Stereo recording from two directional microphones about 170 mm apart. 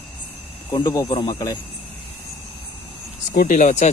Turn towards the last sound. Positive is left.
turn(degrees=45)  # may be behind; listen again after turning